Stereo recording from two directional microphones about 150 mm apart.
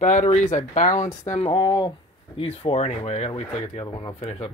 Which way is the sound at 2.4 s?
40° left (ahead or behind).